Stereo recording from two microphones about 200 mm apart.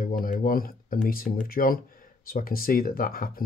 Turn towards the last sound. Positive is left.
turn(degrees=45)  # may be behind; listen again after turning